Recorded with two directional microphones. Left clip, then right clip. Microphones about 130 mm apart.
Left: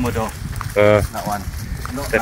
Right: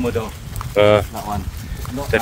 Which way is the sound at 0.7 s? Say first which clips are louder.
Even; 30° right (ahead or behind).